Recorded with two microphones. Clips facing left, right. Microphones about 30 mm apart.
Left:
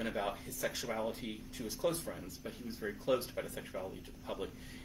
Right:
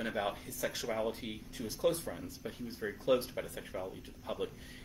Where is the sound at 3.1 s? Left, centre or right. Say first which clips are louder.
Right 3 dB; right.